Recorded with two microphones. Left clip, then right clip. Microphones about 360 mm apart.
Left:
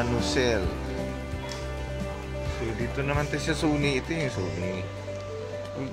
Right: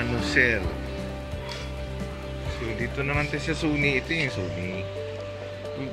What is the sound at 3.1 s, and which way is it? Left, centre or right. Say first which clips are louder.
Speech: even; centre.